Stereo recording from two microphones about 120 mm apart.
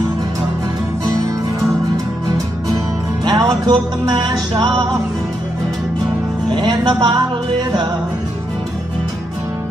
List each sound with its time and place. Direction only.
3.3 s music: 30° right (ahead or behind)
6.5 s music: 35° right (ahead or behind)